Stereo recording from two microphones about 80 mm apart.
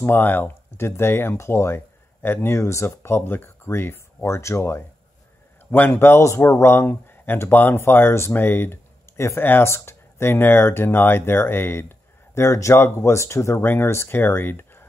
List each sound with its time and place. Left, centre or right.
0.0 s speech: left